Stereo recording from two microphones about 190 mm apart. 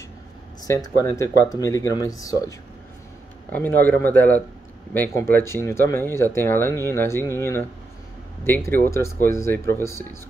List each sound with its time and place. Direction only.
0.6 s speech: 20° left (ahead or behind)
3.5 s speech: 10° left (ahead or behind)